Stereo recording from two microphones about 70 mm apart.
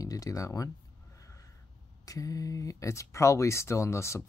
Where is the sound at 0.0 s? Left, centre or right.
Left.